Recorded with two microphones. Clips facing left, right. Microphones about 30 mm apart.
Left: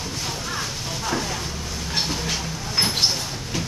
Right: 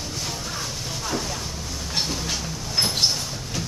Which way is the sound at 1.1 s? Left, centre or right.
Centre.